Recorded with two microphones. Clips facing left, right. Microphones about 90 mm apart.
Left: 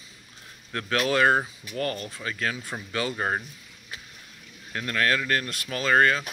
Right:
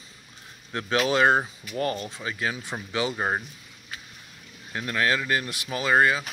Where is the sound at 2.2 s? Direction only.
15° right (ahead or behind).